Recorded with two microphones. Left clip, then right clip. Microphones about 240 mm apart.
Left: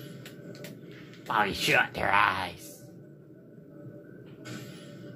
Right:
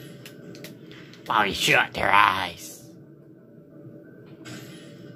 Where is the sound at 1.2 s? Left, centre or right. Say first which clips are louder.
Right 5 dB; right.